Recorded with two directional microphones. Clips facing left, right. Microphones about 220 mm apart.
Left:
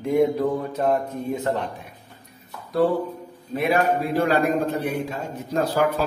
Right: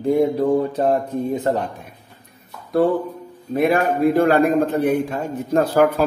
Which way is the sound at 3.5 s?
50° right (ahead or behind).